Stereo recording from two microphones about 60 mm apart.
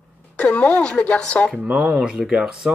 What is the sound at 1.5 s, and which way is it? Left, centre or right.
A man's voice, right.